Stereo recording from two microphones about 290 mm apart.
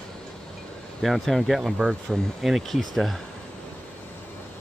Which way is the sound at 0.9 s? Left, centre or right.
Centre.